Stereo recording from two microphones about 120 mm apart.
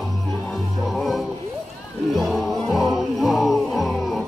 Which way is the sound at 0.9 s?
Centre (ahead or behind).